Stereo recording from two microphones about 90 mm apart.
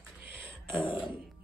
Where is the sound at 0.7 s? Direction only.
70° left (ahead or behind).